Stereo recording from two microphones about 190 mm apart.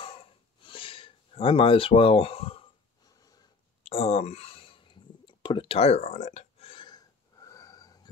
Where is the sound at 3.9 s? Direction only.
30° left (ahead or behind).